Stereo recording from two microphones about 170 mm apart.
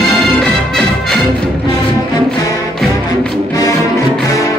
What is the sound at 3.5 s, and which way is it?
Music, 20° left (ahead or behind).